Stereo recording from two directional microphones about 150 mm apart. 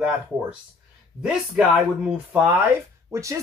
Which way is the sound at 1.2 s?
5° right (ahead or behind).